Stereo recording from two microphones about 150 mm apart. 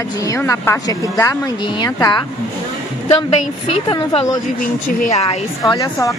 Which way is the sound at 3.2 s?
40° left (ahead or behind).